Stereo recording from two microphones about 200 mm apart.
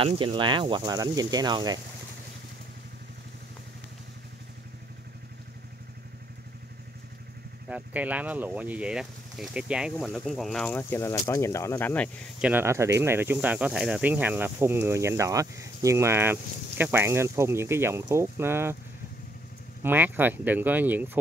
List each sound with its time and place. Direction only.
0.0 s speech: 25° right (ahead or behind)
7.6 s speech: 5° right (ahead or behind)
12.4 s speech: 10° right (ahead or behind)
19.8 s speech: 10° right (ahead or behind)